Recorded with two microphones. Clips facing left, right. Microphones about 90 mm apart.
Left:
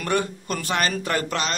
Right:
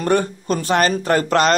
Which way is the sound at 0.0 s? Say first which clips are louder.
Right 6 dB; 35° right (ahead or behind).